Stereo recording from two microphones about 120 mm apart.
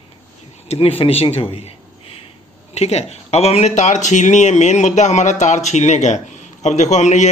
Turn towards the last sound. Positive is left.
turn(degrees=75)  # may be behind; listen again after turning